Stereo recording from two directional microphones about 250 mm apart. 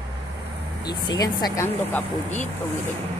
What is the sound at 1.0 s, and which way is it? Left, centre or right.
Speech, centre.